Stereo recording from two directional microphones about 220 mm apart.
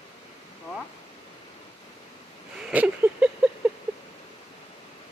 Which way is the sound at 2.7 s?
5° right (ahead or behind).